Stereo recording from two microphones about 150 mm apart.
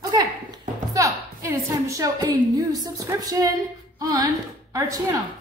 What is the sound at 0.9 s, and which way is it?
A woman's voice, 20° right (ahead or behind).